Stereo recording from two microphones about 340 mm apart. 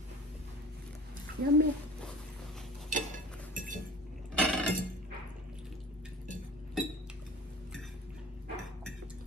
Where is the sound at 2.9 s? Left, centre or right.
Right.